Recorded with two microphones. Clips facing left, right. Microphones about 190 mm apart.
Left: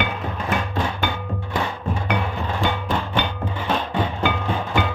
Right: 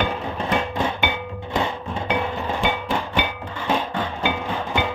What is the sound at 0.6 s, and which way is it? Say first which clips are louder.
Music: right 1 dB; 20° right (ahead or behind).